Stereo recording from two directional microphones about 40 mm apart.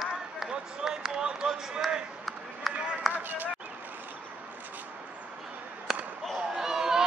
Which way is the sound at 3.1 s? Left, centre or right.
Right.